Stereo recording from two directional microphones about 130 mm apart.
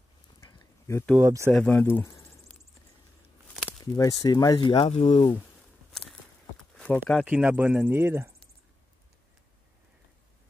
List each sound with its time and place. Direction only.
1.2 s speech: 25° right (ahead or behind)
1.5 s speech: 10° left (ahead or behind)
3.9 s speech: 25° left (ahead or behind)
4.8 s speech: 55° left (ahead or behind)
5.1 s speech: 35° left (ahead or behind)
6.8 s speech: 5° left (ahead or behind)
7.2 s speech: 10° right (ahead or behind)